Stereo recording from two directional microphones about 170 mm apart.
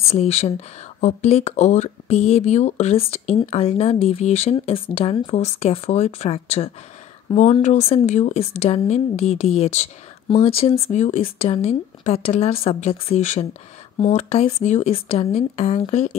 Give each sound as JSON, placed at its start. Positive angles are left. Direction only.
{"t": 0.1, "sound": "speech", "side_deg": 40}